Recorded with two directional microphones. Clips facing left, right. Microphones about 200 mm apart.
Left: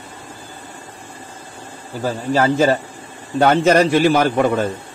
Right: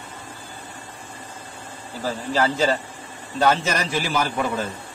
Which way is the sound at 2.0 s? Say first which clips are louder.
Left 5 dB; 55° left (ahead or behind).